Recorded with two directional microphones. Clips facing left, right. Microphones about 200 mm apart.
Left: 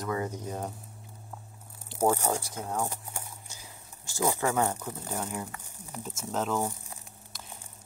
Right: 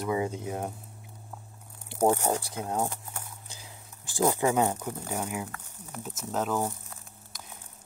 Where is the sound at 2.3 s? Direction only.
35° right (ahead or behind).